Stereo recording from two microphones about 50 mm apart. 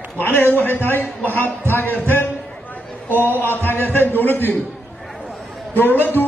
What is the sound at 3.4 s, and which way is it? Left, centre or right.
A man's voice, left.